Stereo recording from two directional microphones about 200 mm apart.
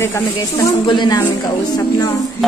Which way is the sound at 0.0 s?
15° left (ahead or behind).